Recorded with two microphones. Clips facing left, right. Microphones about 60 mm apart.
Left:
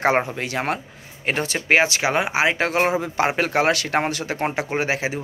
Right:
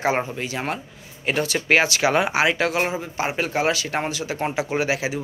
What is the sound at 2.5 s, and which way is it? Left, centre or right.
Speech, left.